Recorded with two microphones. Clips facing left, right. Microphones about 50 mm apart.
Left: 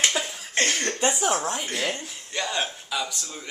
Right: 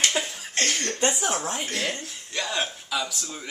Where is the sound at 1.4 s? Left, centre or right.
Centre.